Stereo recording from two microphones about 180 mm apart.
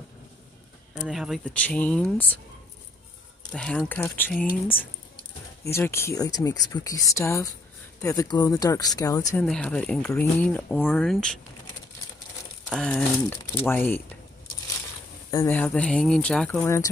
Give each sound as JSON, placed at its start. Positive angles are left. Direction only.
{"t": 1.0, "sound": "speech", "side_deg": 0}
{"t": 3.5, "sound": "speech", "side_deg": 5}
{"t": 9.3, "sound": "speech", "side_deg": 5}
{"t": 12.6, "sound": "speech", "side_deg": 5}
{"t": 15.3, "sound": "speech", "side_deg": 10}